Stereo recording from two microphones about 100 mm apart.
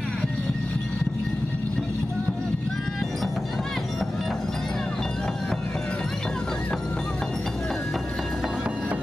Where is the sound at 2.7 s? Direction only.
5° left (ahead or behind); by 9.0 s 15° right (ahead or behind).